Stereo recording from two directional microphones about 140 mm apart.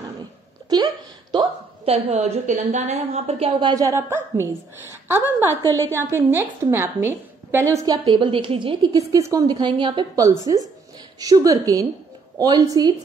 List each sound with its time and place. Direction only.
0.7 s a sound: 30° right (ahead or behind)
1.9 s a woman's voice: 50° right (ahead or behind)
3.6 s a woman's voice: 25° right (ahead or behind)
5.6 s a woman's voice: 20° right (ahead or behind)
9.1 s a woman's voice: 25° right (ahead or behind)